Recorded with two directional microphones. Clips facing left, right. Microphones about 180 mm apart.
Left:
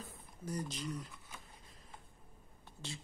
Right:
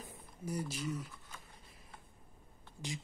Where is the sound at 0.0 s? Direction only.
10° right (ahead or behind).